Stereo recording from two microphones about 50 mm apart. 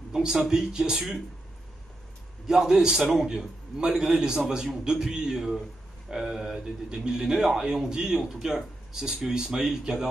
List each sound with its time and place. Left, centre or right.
0.1 s a man's voice: centre
2.4 s a man's voice: centre